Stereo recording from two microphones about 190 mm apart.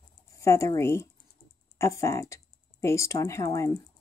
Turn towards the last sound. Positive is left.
turn(degrees=15)  # may be behind; listen again after turning